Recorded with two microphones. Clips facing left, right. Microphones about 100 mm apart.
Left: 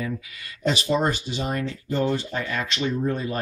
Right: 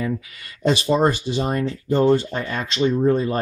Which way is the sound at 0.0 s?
40° right (ahead or behind).